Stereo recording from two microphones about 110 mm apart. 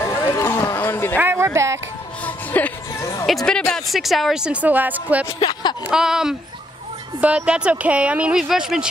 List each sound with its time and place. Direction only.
0.0 s a sound: 25° left (ahead or behind)
1.1 s speech: 20° right (ahead or behind)
2.2 s music: 15° left (ahead or behind)
3.0 s music: 25° left (ahead or behind)
3.3 s speech: 5° left (ahead or behind); by 5.2 s 15° right (ahead or behind)
5.4 s a sound: 40° left (ahead or behind)
5.9 s speech: 5° right (ahead or behind)